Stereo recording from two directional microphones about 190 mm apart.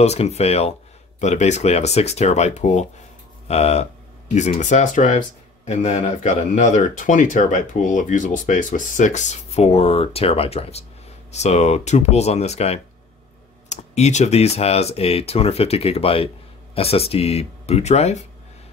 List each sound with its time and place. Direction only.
0.0 s speech: 35° left (ahead or behind)